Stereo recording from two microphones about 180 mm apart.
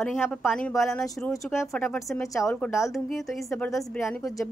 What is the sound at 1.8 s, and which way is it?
A woman's voice, 5° left (ahead or behind).